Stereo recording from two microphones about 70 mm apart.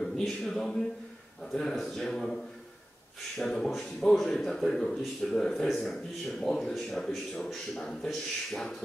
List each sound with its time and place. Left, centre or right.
0.0 s a man's voice: centre